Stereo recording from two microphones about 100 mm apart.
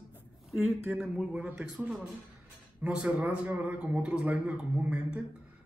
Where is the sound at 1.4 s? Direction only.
15° right (ahead or behind).